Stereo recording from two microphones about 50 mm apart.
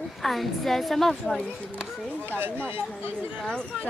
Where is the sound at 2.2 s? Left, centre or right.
Right.